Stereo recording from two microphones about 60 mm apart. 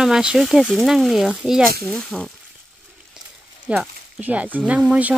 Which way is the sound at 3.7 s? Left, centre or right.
Right.